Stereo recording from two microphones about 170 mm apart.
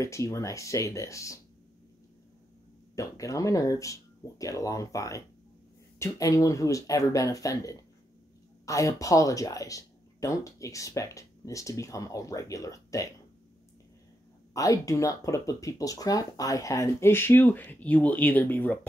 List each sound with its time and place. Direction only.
0.0 s speech: 20° left (ahead or behind)
3.0 s speech: 20° left (ahead or behind)
14.5 s speech: 20° left (ahead or behind)